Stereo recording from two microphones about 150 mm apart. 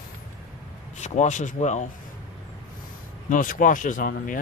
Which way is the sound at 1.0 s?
50° left (ahead or behind).